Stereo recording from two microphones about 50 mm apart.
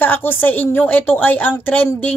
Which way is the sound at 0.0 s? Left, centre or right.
Left.